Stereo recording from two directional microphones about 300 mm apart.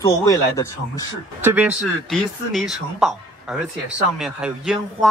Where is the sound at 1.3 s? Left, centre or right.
Centre.